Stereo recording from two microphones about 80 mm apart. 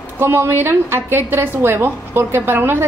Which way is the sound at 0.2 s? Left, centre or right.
Right.